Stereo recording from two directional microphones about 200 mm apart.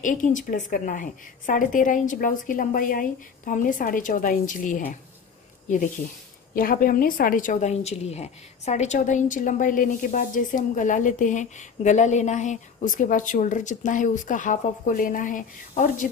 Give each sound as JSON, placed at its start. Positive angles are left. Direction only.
{"t": 0.0, "sound": "a woman's voice", "side_deg": 40}
{"t": 6.5, "sound": "a woman's voice", "side_deg": 45}